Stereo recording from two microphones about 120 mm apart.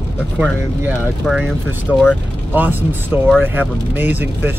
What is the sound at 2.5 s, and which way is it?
Speech, 15° right (ahead or behind).